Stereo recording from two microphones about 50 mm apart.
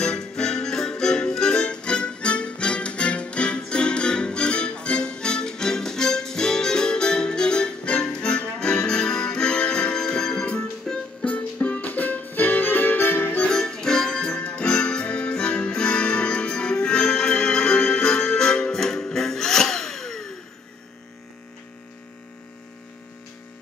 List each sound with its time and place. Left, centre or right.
0.0 s music: centre
11.6 s music: left
13.5 s music: centre